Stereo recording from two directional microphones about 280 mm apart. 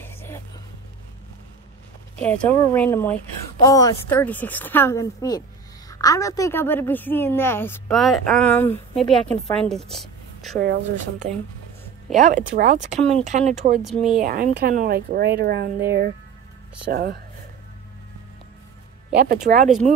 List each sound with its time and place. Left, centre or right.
0.0 s vehicle: centre
2.1 s a woman's voice: centre
10.6 s speech: right
12.1 s speech: centre
12.5 s speech: right
13.8 s speech: centre
14.2 s speech: right
19.1 s speech: right